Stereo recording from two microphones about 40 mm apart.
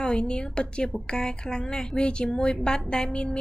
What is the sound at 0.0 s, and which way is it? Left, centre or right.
A woman's voice, left.